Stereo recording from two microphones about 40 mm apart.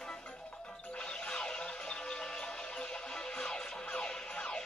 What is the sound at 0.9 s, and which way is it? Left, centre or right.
Music, left.